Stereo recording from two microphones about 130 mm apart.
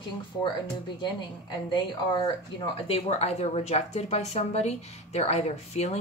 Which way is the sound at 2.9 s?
55° left (ahead or behind).